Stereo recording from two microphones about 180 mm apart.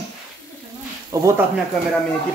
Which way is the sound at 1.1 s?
20° right (ahead or behind).